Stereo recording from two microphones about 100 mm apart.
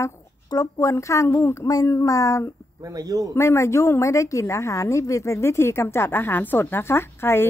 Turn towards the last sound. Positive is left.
turn(degrees=25)  # may be behind; listen again after turning